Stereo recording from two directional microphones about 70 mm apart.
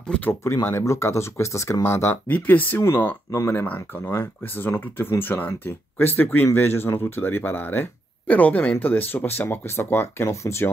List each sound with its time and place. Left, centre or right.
0.2 s speech: left
2.2 s speech: left
3.3 s speech: left